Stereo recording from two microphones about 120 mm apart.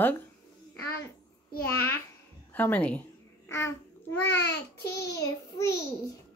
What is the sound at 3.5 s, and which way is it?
A child's voice, 25° left (ahead or behind).